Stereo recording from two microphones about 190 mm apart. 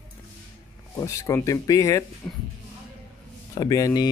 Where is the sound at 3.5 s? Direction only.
20° left (ahead or behind).